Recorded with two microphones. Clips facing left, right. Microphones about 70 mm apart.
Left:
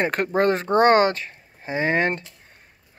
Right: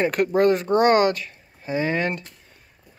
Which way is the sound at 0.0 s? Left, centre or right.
Left.